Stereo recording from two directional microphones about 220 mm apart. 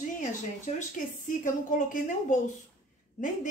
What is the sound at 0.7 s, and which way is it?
Speech, 35° left (ahead or behind).